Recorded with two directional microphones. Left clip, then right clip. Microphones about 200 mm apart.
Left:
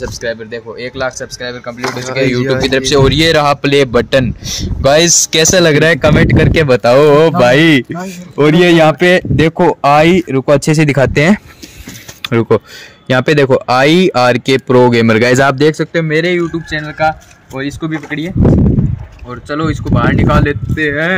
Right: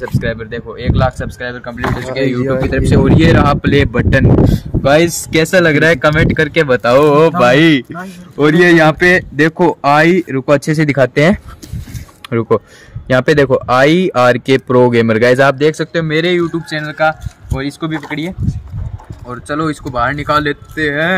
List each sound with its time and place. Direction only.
0.0 s speech: 10° left (ahead or behind)
2.7 s speech: 40° left (ahead or behind); by 18.3 s 5° left (ahead or behind)
19.5 s speech: centre (ahead or behind)